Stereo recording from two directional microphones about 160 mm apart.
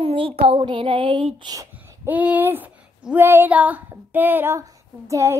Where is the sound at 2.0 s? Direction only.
10° right (ahead or behind).